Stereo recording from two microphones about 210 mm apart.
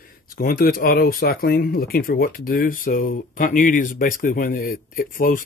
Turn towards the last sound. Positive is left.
turn(degrees=40)  # may be behind; listen again after turning